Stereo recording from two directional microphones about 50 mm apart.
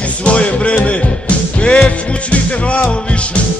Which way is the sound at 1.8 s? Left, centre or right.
Left.